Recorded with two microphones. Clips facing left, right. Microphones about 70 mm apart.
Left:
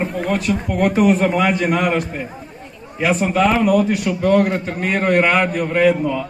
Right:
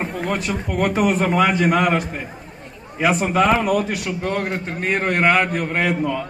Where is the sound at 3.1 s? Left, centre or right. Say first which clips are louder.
Left 1 dB; centre.